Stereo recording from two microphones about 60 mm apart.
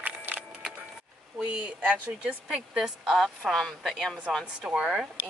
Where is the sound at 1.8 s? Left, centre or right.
Right; by 4.1 s centre.